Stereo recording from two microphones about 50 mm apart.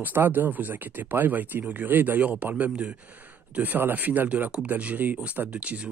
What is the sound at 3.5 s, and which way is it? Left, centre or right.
Speech, right.